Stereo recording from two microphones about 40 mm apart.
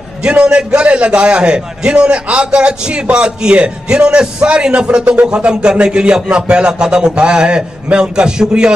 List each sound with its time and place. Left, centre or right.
0.2 s a man's voice: right